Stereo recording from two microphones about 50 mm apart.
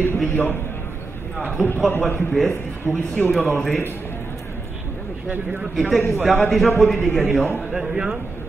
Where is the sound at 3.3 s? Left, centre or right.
Centre.